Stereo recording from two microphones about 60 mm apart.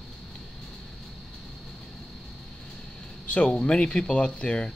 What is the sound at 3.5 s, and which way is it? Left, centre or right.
Speech, centre.